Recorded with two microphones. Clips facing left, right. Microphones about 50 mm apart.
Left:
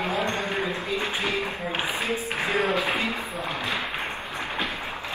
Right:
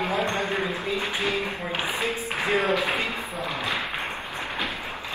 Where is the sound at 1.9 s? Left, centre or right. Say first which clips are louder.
Right 1 dB; right.